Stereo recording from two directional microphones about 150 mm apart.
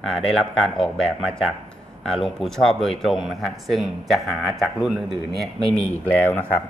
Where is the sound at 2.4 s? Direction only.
Centre (ahead or behind).